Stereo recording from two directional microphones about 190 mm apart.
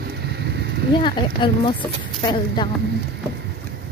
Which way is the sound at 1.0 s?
25° left (ahead or behind).